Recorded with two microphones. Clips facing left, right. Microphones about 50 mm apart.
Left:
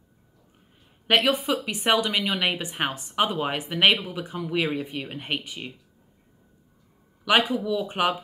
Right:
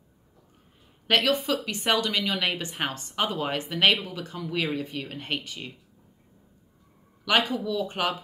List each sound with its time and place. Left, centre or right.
1.0 s speech: centre
7.2 s speech: centre